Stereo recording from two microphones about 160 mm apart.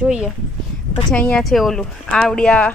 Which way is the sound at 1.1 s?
5° left (ahead or behind).